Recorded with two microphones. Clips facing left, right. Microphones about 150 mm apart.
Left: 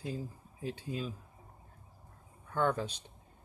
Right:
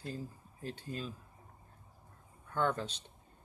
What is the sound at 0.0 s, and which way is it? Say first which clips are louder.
Speech: left 3 dB; 10° left (ahead or behind).